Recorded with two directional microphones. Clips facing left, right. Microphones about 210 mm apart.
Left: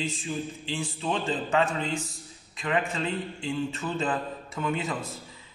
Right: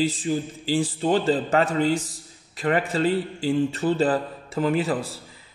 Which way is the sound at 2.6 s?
35° right (ahead or behind).